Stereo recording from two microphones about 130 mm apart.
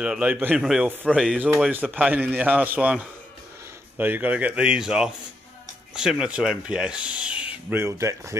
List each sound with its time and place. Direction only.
0.0 s speech: 10° right (ahead or behind)
7.8 s speech: 25° right (ahead or behind)